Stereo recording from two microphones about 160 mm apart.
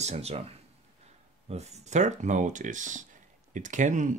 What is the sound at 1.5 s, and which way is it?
Speech, 45° right (ahead or behind).